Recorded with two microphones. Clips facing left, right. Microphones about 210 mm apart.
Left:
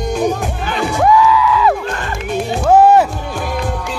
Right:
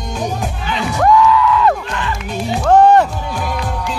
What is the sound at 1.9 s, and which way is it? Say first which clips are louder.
Music: even; 45° left (ahead or behind).